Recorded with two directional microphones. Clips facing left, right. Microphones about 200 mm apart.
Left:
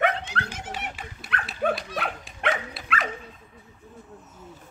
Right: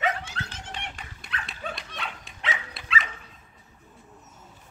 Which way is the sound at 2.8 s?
55° left (ahead or behind).